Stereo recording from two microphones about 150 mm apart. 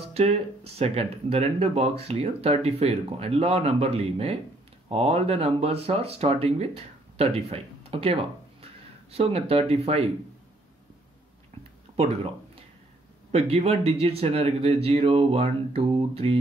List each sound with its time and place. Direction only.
0.1 s speech: 45° right (ahead or behind)
13.3 s speech: 45° right (ahead or behind)